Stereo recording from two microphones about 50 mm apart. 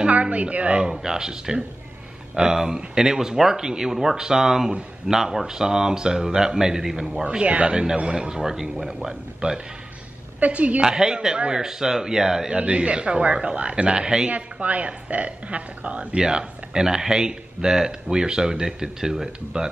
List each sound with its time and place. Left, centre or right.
0.0 s a sound: right
0.9 s speech: centre
7.2 s a woman's voice: right
10.4 s a woman's voice: right
10.8 s a woman's voice: centre
16.2 s speech: centre